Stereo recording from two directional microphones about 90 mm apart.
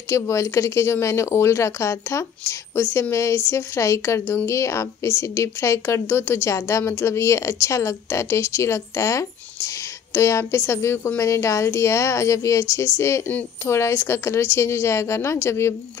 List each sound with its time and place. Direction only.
0.1 s a woman's voice: 30° left (ahead or behind)